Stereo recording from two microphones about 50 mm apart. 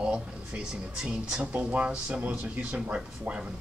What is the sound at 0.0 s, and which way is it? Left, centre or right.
Speech, centre.